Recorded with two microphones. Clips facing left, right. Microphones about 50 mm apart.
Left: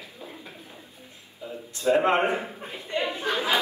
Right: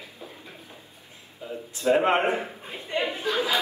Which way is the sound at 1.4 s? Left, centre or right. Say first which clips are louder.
Right 1 dB; right.